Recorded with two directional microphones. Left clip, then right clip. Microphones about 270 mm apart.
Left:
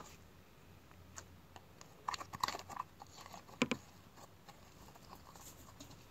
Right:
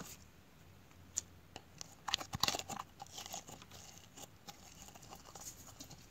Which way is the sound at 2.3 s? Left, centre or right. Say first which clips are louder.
Right 2 dB; right.